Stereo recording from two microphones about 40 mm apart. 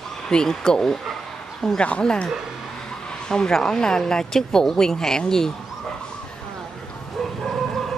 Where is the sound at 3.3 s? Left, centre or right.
Centre.